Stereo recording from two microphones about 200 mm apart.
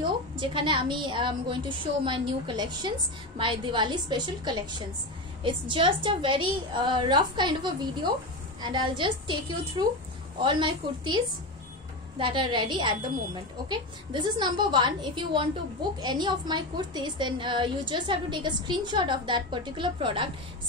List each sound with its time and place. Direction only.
0.0 s a woman's voice: 25° right (ahead or behind)
12.2 s a woman's voice: 25° right (ahead or behind)